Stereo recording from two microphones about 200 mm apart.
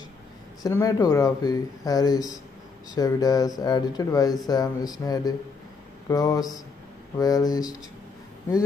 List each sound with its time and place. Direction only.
0.6 s speech: 15° left (ahead or behind)